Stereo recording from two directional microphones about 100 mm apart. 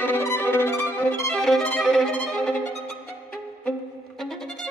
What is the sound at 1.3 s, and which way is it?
Violin, 5° left (ahead or behind).